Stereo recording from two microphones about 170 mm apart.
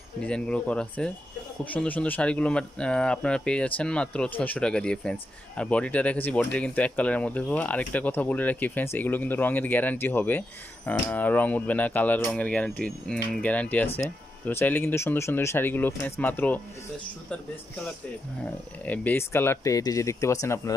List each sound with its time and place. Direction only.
0.3 s speech: 5° left (ahead or behind)
18.9 s speech: 10° left (ahead or behind)